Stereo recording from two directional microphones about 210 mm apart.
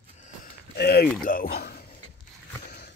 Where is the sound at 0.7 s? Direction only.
50° left (ahead or behind).